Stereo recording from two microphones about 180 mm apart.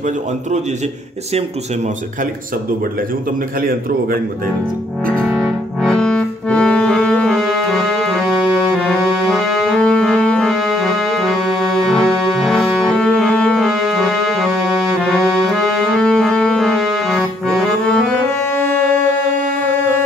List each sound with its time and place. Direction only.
5.1 s music: centre (ahead or behind)
18.8 s music: 50° right (ahead or behind)